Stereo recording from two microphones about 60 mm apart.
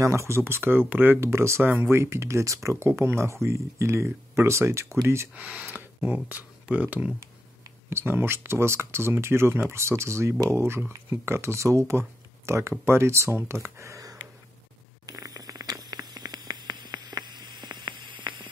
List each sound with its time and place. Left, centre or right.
0.0 s speech: right
0.8 s speech: right
1.2 s speech: right
5.3 s speech: right
7.9 s speech: right
15.0 s patter: right
17.1 s a sound: right